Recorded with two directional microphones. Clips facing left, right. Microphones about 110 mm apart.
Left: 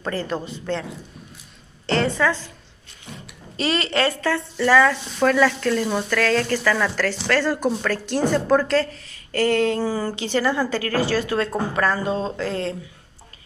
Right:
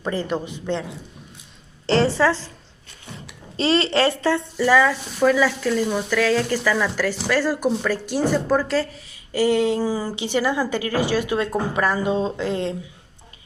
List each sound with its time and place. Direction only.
0.0 s speech: 15° right (ahead or behind)
1.9 s a woman's voice: 30° right (ahead or behind)
3.5 s a woman's voice: 25° right (ahead or behind)
4.6 s speech: 10° right (ahead or behind)